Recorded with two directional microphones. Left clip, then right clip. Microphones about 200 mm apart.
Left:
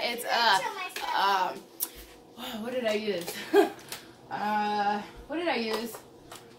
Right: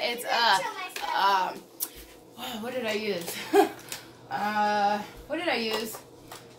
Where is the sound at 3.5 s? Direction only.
15° right (ahead or behind).